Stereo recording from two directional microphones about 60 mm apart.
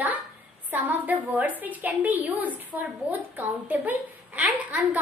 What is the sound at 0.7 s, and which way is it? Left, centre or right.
A woman's voice, right.